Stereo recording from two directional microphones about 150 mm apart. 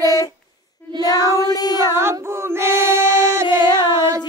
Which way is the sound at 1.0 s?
20° right (ahead or behind).